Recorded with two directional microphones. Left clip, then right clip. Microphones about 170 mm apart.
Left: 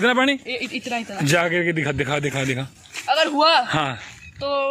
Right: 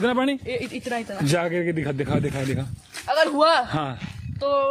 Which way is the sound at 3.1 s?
15° right (ahead or behind).